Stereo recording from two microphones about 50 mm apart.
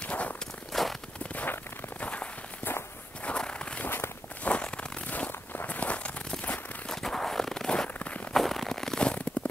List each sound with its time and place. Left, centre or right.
0.0 s walk: left
0.7 s a sound: centre
1.3 s a sound: left
3.3 s walk: centre
3.8 s walk: left
4.4 s walk: left
6.9 s walk: centre
8.3 s fireworks: centre; by 9.3 s left